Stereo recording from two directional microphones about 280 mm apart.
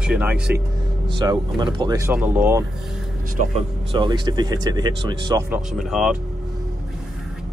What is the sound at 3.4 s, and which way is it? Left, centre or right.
Speech, right.